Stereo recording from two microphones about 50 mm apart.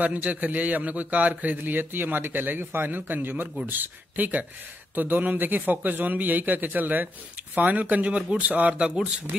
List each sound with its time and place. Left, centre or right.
0.0 s a man's voice: right